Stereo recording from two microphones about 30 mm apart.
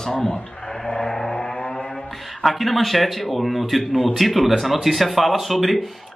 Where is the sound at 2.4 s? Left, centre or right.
Centre.